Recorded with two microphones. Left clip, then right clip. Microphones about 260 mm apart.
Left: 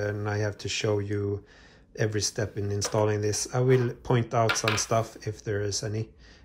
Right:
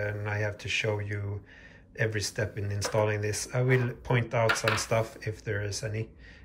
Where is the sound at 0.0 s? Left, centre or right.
Centre.